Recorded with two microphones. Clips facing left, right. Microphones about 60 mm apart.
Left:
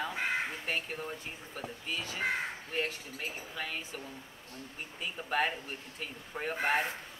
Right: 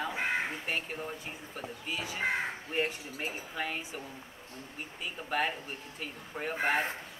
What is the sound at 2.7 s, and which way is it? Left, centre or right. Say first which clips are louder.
Speech: right 3 dB; centre.